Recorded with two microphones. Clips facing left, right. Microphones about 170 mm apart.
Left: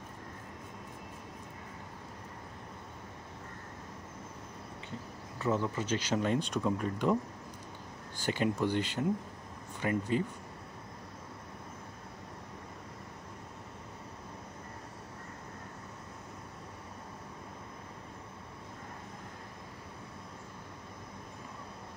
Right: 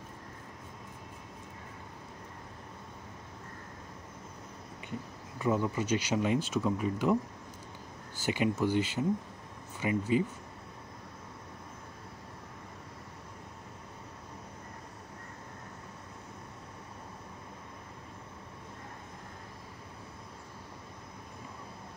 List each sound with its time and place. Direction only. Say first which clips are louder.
5.4 s speech: right 2 dB; 10° right (ahead or behind)
8.2 s speech: right 1 dB; 10° right (ahead or behind)